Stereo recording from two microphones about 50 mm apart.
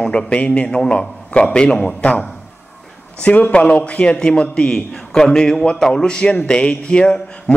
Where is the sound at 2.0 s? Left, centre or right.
Left.